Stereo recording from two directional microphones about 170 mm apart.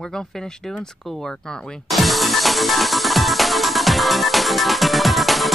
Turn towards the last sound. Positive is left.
turn(degrees=0)  # may be behind; listen again after turning